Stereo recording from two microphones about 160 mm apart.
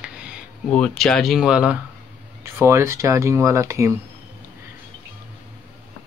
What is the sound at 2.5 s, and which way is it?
Speech, 15° right (ahead or behind).